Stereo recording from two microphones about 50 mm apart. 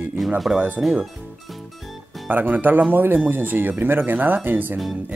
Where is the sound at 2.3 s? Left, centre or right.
Right.